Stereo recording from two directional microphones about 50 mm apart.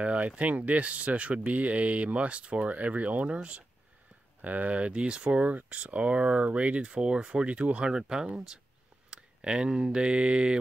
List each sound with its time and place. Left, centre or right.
0.0 s speech: right
4.4 s speech: right